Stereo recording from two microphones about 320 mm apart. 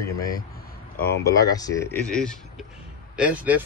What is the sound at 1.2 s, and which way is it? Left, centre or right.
Speech, centre.